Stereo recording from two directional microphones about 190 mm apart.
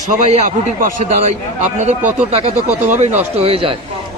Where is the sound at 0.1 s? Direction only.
35° right (ahead or behind).